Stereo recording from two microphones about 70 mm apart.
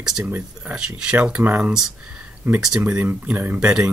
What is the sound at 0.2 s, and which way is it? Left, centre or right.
Speech, right.